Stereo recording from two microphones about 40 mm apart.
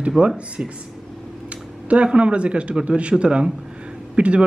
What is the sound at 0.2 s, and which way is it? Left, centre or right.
Speech, right.